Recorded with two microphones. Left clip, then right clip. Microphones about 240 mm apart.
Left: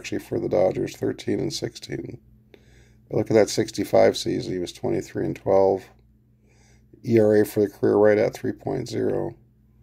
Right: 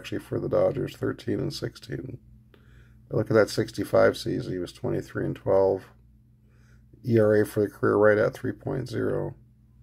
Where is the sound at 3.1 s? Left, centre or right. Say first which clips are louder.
Left 3 dB; left.